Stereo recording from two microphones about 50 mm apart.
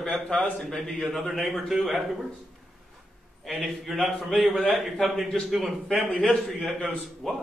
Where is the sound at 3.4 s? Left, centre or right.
Centre.